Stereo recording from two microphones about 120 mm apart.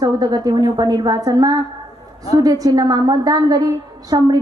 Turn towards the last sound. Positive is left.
turn(degrees=-35)  # may be behind; listen again after turning